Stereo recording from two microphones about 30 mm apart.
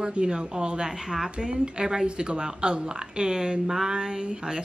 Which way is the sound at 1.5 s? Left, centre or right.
Right.